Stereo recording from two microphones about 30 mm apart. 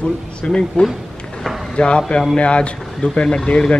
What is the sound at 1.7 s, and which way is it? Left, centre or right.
Speech, left.